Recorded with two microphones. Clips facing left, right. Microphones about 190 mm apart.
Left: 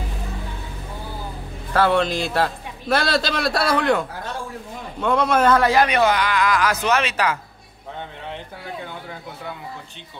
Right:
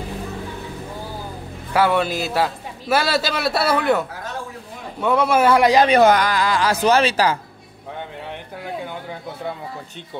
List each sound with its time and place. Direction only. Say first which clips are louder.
1.7 s a man's voice: even; 10° right (ahead or behind)
5.0 s a man's voice: right 1 dB; 5° right (ahead or behind)
5.9 s speech: right 5 dB; 40° right (ahead or behind)